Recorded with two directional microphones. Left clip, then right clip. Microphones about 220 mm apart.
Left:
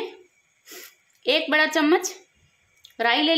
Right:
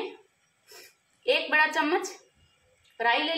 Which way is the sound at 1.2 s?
45° left (ahead or behind).